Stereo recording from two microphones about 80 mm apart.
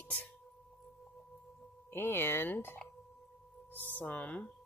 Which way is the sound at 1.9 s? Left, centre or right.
Left.